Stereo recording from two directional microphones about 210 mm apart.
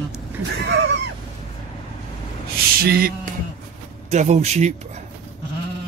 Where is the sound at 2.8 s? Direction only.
45° right (ahead or behind).